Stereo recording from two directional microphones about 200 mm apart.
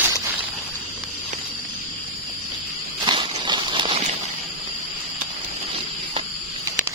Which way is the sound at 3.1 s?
25° right (ahead or behind).